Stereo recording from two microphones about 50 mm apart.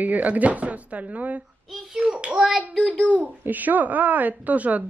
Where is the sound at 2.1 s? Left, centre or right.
Right.